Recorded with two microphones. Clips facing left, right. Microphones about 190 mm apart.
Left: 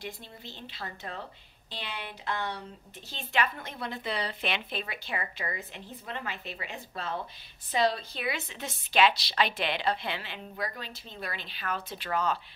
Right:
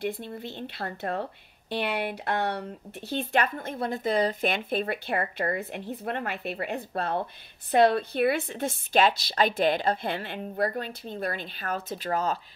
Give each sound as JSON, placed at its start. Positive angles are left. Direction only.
{"t": 0.0, "sound": "speech", "side_deg": -55}
{"t": 3.1, "sound": "a woman's voice", "side_deg": -50}